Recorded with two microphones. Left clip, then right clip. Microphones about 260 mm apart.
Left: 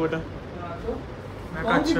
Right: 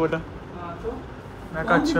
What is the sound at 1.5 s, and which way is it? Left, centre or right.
Speech, centre.